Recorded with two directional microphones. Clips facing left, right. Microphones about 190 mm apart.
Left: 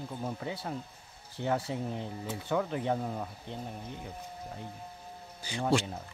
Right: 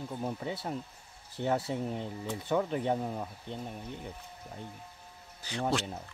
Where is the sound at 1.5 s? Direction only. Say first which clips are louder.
Right 1 dB; centre (ahead or behind).